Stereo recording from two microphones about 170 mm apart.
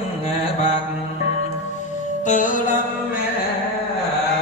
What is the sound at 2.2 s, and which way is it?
Music, 50° left (ahead or behind).